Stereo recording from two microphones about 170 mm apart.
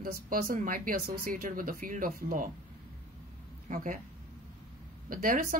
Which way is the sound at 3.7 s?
50° right (ahead or behind).